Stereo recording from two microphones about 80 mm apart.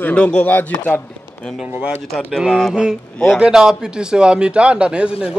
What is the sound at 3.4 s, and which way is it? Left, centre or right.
A man's voice, centre.